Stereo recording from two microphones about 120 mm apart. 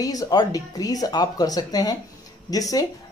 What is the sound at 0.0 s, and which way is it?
A woman's voice, 30° left (ahead or behind).